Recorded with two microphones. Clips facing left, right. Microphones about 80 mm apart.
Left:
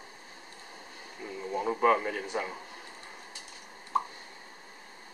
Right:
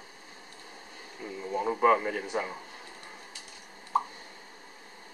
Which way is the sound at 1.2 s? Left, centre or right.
Centre.